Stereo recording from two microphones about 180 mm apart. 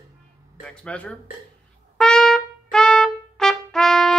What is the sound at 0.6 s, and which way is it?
Music, 5° left (ahead or behind).